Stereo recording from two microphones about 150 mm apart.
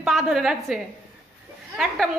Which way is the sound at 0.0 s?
Centre (ahead or behind).